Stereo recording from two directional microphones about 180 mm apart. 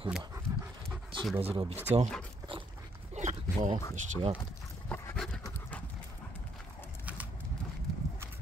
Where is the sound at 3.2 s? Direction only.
40° right (ahead or behind).